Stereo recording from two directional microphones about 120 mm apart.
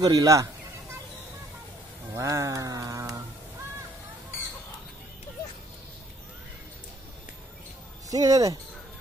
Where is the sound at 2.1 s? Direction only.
25° right (ahead or behind).